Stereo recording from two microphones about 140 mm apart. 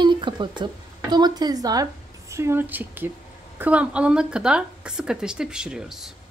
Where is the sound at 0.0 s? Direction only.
35° right (ahead or behind).